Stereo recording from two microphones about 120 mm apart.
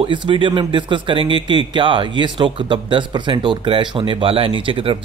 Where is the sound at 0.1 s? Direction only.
45° right (ahead or behind).